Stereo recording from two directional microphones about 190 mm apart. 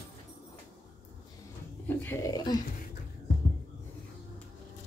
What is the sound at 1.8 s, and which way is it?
Speech, 10° left (ahead or behind).